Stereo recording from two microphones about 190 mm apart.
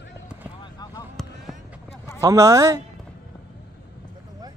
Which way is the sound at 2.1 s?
15° right (ahead or behind).